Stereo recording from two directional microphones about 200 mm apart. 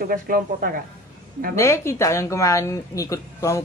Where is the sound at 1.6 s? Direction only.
15° left (ahead or behind).